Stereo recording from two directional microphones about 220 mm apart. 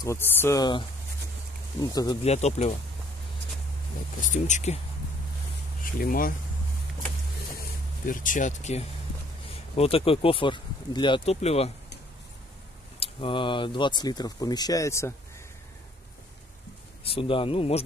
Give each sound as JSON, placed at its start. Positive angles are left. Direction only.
{"t": 0.0, "sound": "speech", "side_deg": 10}
{"t": 2.2, "sound": "speech", "side_deg": 30}
{"t": 4.2, "sound": "speech", "side_deg": 35}
{"t": 5.9, "sound": "speech", "side_deg": 40}
{"t": 8.1, "sound": "speech", "side_deg": 35}
{"t": 13.0, "sound": "speech", "side_deg": 25}
{"t": 17.1, "sound": "speech", "side_deg": 25}